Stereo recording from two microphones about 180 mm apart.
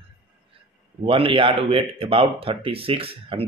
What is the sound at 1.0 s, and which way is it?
Speech, 30° right (ahead or behind).